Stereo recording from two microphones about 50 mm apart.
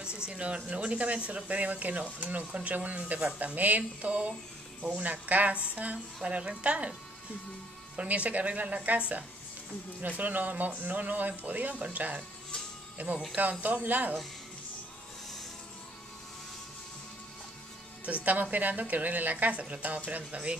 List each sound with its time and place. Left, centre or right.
0.0 s speech: centre; by 14.1 s right
18.0 s speech: right